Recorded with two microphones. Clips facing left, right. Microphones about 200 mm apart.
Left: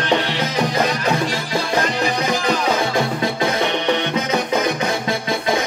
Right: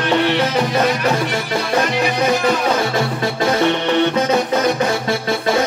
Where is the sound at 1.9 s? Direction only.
65° right (ahead or behind).